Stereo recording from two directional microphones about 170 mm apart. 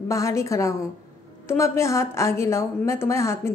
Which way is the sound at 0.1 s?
15° left (ahead or behind).